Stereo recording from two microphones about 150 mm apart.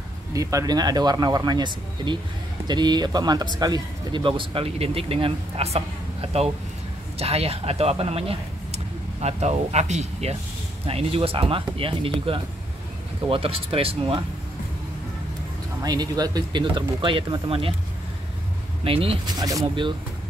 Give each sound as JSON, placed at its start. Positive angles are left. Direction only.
{"t": 0.3, "sound": "speech", "side_deg": -20}
{"t": 15.8, "sound": "speech", "side_deg": -25}
{"t": 18.9, "sound": "speech", "side_deg": -40}
{"t": 19.3, "sound": "speech", "side_deg": -25}